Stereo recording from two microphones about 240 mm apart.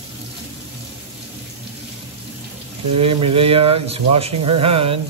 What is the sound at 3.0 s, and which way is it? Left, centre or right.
Speech, right.